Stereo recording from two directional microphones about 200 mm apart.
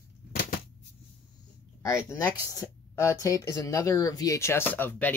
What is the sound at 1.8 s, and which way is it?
Speech, 15° left (ahead or behind).